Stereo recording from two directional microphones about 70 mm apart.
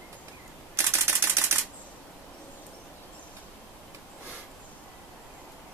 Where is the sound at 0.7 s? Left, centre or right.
Right.